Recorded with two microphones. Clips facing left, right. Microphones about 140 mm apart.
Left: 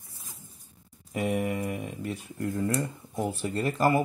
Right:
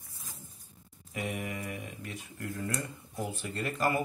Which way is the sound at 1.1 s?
35° left (ahead or behind).